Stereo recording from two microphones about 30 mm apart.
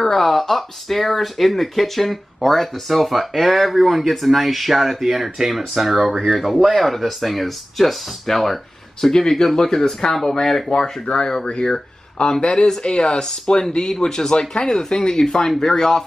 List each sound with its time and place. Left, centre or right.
0.0 s speech: centre